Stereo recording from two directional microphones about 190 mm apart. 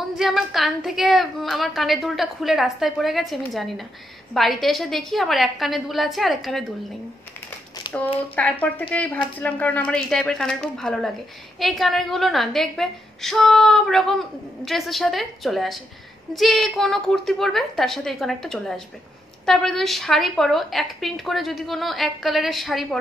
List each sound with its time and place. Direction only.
0.2 s a woman's voice: centre (ahead or behind)
7.8 s a sound: 25° left (ahead or behind)
8.4 s a woman's voice: 10° left (ahead or behind)